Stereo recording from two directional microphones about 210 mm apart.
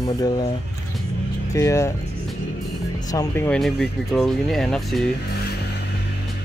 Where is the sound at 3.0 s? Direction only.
15° left (ahead or behind).